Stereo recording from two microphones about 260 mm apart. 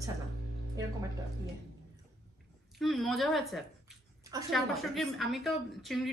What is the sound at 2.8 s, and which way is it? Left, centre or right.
A woman's voice, centre.